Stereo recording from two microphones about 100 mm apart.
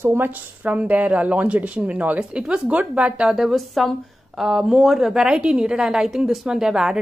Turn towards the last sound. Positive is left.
turn(degrees=-5)  # may be behind; listen again after turning